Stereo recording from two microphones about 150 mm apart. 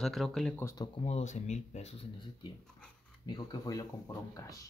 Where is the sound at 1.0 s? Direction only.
45° left (ahead or behind).